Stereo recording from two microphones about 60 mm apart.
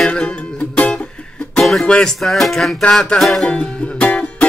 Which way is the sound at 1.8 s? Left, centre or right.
Centre.